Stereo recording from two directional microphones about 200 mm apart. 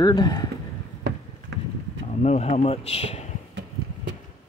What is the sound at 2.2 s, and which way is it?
Speech, 30° left (ahead or behind).